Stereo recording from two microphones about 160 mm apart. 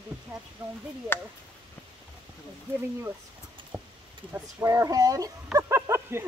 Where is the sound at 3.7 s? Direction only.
5° right (ahead or behind).